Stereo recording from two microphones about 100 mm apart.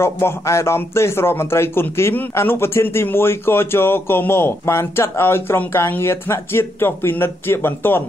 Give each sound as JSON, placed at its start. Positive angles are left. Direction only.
{"t": 0.0, "sound": "a man's voice", "side_deg": 25}